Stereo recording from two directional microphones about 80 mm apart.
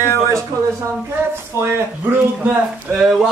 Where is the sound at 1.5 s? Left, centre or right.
Left.